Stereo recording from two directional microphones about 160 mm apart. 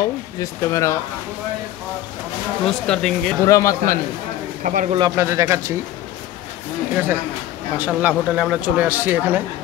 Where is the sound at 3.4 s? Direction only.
20° left (ahead or behind).